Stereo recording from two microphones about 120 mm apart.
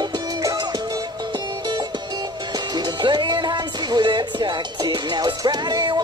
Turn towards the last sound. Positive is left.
turn(degrees=-40)  # may be behind; listen again after turning